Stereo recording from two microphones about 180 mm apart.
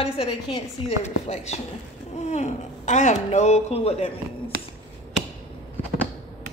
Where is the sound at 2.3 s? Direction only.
40° left (ahead or behind).